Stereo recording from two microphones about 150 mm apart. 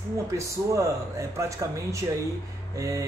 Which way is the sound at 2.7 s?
20° right (ahead or behind).